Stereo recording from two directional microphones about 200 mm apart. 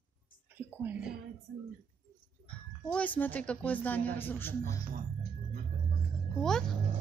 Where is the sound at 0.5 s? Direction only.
10° right (ahead or behind).